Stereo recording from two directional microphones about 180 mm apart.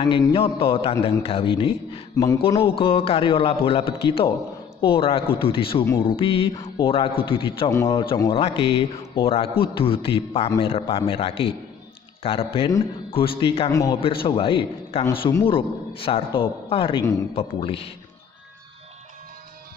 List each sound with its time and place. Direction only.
0.0 s a man's voice: 25° left (ahead or behind)
2.6 s a man's voice: 30° left (ahead or behind)
13.7 s a man's voice: 20° left (ahead or behind)
13.9 s a man's voice: 30° left (ahead or behind)